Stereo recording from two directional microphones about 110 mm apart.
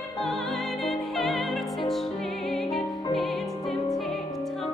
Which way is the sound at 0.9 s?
Centre (ahead or behind).